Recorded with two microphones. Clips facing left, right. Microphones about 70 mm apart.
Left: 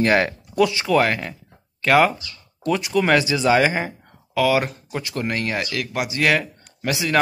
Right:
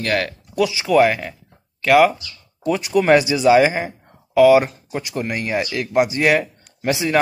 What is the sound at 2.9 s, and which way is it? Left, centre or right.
Speech, centre.